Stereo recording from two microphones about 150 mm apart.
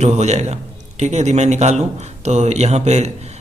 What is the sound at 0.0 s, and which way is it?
A man's voice, 50° right (ahead or behind).